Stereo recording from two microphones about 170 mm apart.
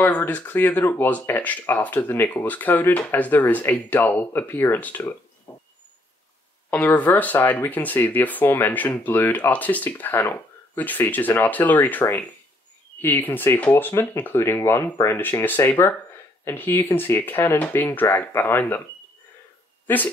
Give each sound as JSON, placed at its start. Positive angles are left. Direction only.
{"t": 0.0, "sound": "speech", "side_deg": 10}
{"t": 5.5, "sound": "a sound", "side_deg": 20}
{"t": 6.7, "sound": "speech", "side_deg": 10}